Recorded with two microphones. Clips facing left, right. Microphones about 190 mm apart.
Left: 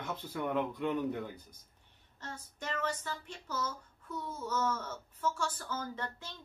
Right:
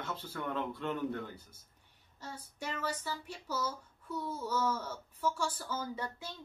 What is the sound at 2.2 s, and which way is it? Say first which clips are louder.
Speech: even; 10° right (ahead or behind).